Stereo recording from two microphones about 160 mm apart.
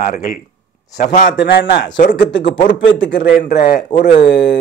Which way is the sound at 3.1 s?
70° left (ahead or behind).